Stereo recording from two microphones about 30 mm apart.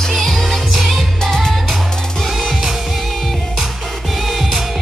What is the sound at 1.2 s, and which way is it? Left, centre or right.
Music, centre.